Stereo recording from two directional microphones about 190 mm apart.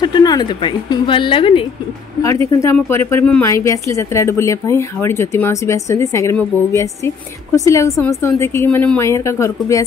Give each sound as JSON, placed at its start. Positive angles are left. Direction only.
{"t": 0.0, "sound": "a woman's voice", "side_deg": 20}
{"t": 2.2, "sound": "speech", "side_deg": 15}